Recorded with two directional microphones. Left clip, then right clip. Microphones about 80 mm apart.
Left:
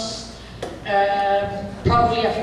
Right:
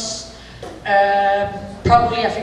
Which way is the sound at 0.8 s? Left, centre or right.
Right.